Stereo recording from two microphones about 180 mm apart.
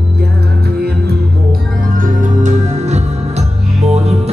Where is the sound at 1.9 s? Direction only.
45° right (ahead or behind).